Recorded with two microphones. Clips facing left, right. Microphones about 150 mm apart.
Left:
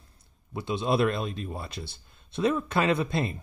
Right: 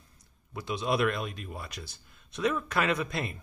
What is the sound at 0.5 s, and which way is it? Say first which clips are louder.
A man's voice: left 3 dB; 25° left (ahead or behind).